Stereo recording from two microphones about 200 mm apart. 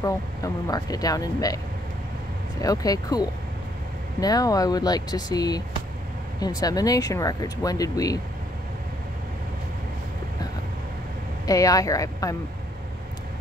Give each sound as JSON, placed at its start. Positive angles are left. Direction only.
{"t": 0.0, "sound": "speech", "side_deg": 15}
{"t": 2.6, "sound": "speech", "side_deg": 20}
{"t": 11.4, "sound": "speech", "side_deg": 15}